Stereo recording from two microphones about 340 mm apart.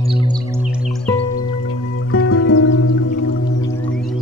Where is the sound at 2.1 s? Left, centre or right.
Left.